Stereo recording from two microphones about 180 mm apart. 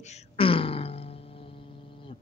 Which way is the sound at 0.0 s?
35° left (ahead or behind).